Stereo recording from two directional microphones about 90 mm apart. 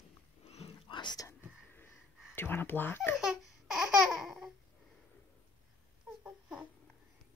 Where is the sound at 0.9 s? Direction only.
60° left (ahead or behind).